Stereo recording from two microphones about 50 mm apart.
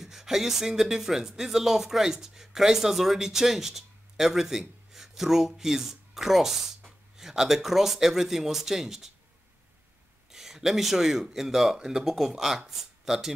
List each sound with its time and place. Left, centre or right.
0.0 s speech: centre
10.3 s speech: centre